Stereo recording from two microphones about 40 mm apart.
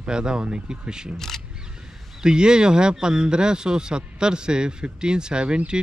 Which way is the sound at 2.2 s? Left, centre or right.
Right.